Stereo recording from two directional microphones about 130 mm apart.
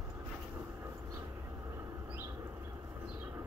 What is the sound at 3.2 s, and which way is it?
Train, 20° right (ahead or behind).